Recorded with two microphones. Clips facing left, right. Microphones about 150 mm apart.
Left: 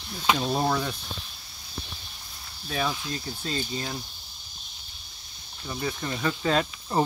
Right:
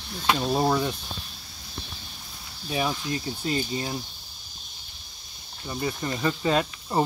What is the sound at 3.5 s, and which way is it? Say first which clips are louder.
Speech: right 3 dB; 10° right (ahead or behind).